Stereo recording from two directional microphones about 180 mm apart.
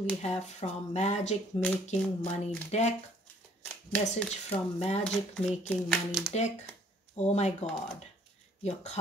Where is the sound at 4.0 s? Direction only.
40° left (ahead or behind).